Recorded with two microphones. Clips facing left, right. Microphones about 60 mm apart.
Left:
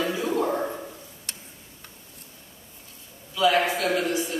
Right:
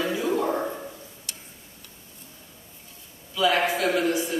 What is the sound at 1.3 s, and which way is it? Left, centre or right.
Tick-tock, left.